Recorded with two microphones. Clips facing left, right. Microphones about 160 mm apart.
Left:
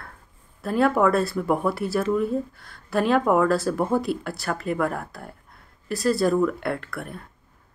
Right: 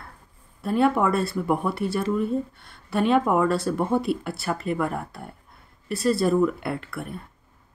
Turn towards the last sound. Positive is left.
turn(degrees=0)  # may be behind; listen again after turning